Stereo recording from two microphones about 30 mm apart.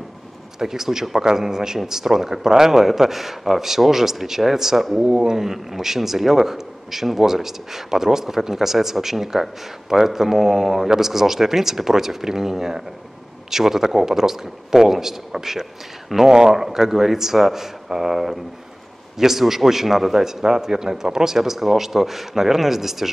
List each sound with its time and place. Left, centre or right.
0.6 s speech: centre